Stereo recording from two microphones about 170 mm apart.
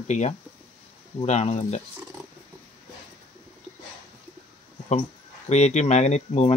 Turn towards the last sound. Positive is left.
turn(degrees=40)  # may be behind; listen again after turning